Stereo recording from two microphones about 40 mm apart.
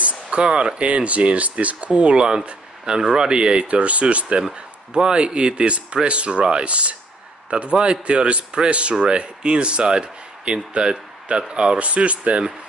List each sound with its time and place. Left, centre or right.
0.0 s speech: right